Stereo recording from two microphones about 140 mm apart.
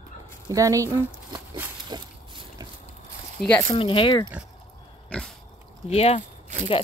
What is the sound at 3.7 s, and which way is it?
Speech, 35° left (ahead or behind).